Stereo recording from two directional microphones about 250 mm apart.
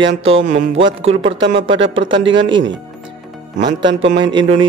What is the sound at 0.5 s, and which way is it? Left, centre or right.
Speech, right.